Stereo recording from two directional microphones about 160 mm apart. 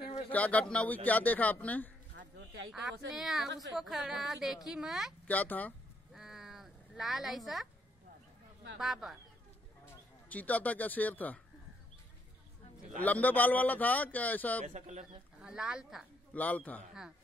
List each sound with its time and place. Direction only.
0.3 s a man's voice: 10° left (ahead or behind)
2.1 s a sound: 90° right
2.7 s speech: centre (ahead or behind)
5.2 s a man's voice: 10° left (ahead or behind)
6.1 s a sound: 5° right (ahead or behind)
8.7 s speech: centre (ahead or behind)
10.3 s a man's voice: 10° left (ahead or behind)
13.0 s a man's voice: 10° left (ahead or behind)
14.7 s speech: 50° right (ahead or behind)
15.4 s speech: 5° right (ahead or behind)
16.3 s a man's voice: 10° left (ahead or behind)